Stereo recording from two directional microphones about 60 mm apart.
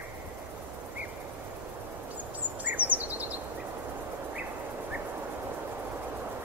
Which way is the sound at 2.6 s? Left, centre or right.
Right.